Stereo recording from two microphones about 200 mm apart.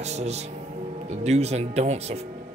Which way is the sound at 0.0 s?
35° right (ahead or behind).